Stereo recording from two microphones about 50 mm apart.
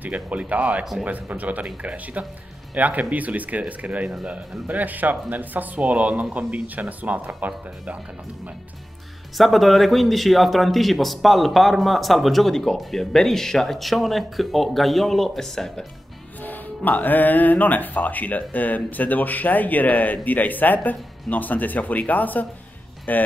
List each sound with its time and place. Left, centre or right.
0.0 s speech: right
9.4 s speech: centre
16.4 s speech: left